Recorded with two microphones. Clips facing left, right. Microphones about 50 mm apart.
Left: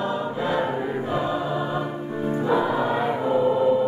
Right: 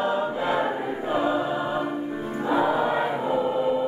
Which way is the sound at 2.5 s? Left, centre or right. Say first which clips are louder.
Right 1 dB; centre.